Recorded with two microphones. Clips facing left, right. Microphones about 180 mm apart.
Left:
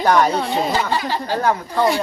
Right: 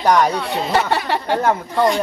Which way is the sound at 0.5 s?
65° right (ahead or behind).